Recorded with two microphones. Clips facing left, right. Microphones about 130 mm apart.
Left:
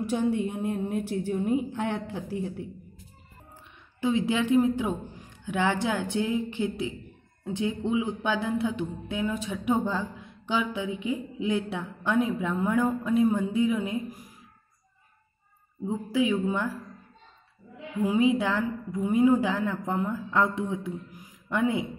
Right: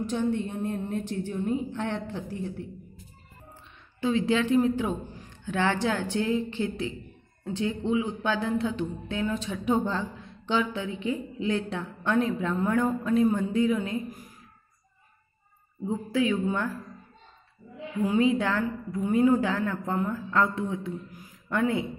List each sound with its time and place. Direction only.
0.0 s a woman's voice: 10° left (ahead or behind)
4.0 s a woman's voice: 15° left (ahead or behind)
15.9 s a woman's voice: 15° left (ahead or behind)
18.0 s a woman's voice: 15° left (ahead or behind)